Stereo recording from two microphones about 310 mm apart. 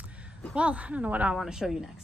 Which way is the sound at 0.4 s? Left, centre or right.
Centre.